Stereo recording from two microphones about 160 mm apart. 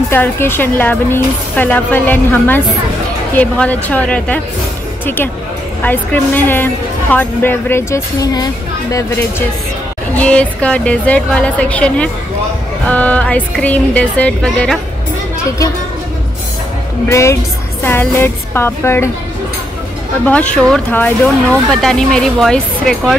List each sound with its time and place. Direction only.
0.1 s a woman's voice: 15° left (ahead or behind)
10.1 s a woman's voice: 10° left (ahead or behind)
17.1 s a woman's voice: 20° left (ahead or behind)
20.2 s a woman's voice: 10° left (ahead or behind)